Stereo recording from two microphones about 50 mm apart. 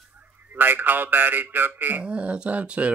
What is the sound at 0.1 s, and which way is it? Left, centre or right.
A man's voice, right.